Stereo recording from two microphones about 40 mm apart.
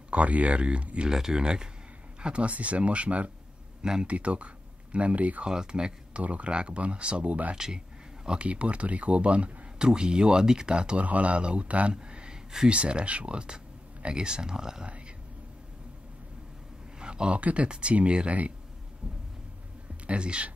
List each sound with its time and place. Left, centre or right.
0.1 s speech: right
1.1 s speech: centre
2.2 s speech: right
3.8 s speech: centre
4.1 s speech: right
5.4 s speech: right
6.2 s speech: right
7.5 s speech: centre
8.3 s speech: right
11.1 s speech: right
11.9 s a sound: right
12.7 s speech: right
17.0 s speech: right
20.1 s speech: right